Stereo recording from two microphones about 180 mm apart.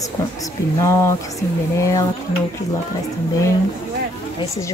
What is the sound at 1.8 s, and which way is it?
Speech, 15° left (ahead or behind).